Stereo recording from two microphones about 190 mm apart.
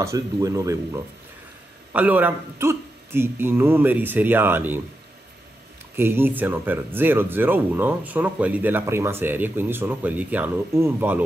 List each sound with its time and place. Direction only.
0.0 s speech: 15° right (ahead or behind)
5.9 s speech: 10° right (ahead or behind)